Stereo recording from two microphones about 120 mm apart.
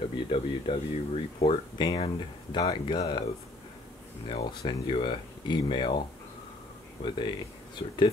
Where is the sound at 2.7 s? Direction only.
40° left (ahead or behind).